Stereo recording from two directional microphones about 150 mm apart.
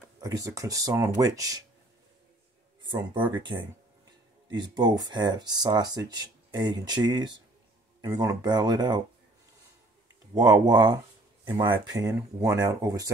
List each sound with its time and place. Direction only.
0.2 s speech: 25° right (ahead or behind)
2.8 s speech: 30° right (ahead or behind)
10.3 s speech: 25° right (ahead or behind)